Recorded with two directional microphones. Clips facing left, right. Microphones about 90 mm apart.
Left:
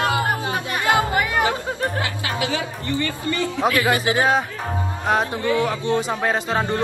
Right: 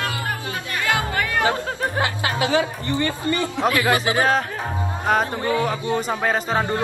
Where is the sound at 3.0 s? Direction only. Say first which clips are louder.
Right 1 dB; 20° right (ahead or behind).